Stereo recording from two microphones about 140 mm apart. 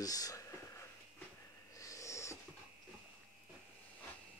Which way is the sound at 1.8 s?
25° left (ahead or behind).